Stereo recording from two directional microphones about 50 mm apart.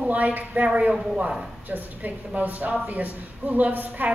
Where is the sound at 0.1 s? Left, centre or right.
Right.